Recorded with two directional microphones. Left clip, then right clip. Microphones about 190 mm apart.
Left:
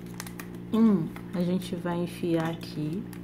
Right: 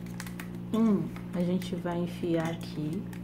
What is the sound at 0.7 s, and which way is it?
A woman's voice, 20° left (ahead or behind).